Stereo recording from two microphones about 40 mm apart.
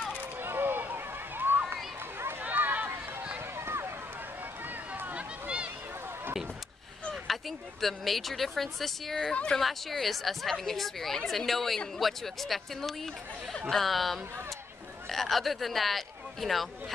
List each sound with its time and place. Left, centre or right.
0.4 s run: right
2.4 s run: right
3.3 s a sound: right
5.1 s a sound: right
7.2 s speech: centre
9.3 s speech: left
9.6 s speech: centre